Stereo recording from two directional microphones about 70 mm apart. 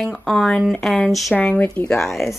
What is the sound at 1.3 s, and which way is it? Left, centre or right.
Speech, left.